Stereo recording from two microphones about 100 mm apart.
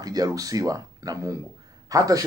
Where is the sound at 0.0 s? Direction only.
40° right (ahead or behind).